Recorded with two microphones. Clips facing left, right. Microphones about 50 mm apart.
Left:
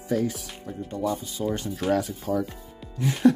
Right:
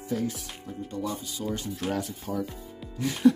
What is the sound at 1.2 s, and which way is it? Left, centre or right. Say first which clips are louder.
Speech: left 4 dB; left.